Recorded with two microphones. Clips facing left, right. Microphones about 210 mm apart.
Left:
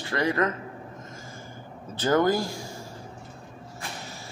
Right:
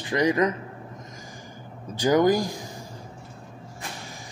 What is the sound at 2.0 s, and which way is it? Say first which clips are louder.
Speech: right 3 dB; 15° right (ahead or behind).